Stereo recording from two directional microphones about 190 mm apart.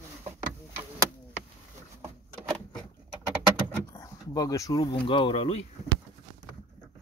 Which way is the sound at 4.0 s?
15° left (ahead or behind).